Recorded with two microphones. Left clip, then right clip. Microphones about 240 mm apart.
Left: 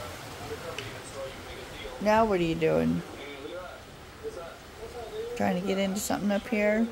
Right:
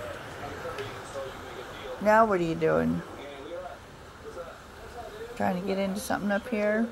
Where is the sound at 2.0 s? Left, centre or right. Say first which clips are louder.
Right 2 dB; centre.